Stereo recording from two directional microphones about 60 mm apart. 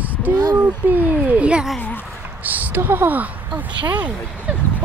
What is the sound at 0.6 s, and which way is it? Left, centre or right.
Speech, right.